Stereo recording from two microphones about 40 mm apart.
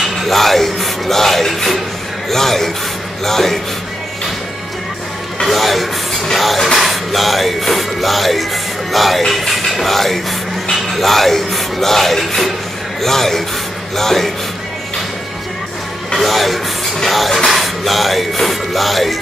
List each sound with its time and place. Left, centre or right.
0.0 s music: centre
2.3 s speech: centre
5.4 s music: centre
8.9 s speech: centre
9.5 s music: centre
10.7 s speech: centre
16.2 s speech: centre